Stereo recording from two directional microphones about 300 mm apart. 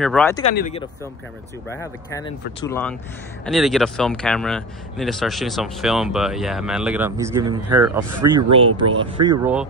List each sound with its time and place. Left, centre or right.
0.0 s speech: centre
0.4 s speech: left
1.7 s speech: centre